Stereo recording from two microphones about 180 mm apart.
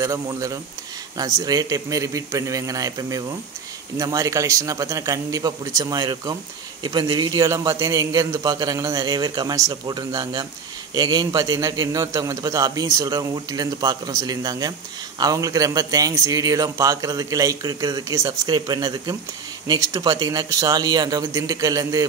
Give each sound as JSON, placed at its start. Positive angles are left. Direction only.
{"t": 0.0, "sound": "a man's voice", "side_deg": -20}